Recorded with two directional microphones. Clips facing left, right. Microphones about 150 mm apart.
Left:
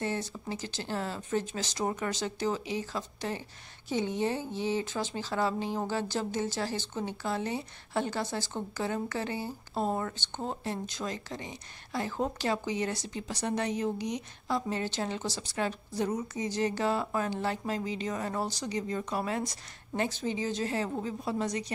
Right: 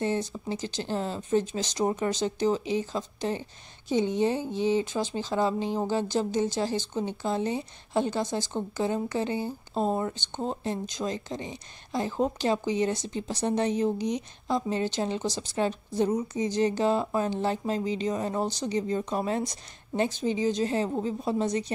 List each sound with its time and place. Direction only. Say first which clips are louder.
0.0 s speech: right 5 dB; 20° right (ahead or behind)